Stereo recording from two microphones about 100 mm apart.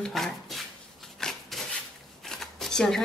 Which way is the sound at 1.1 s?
5° left (ahead or behind).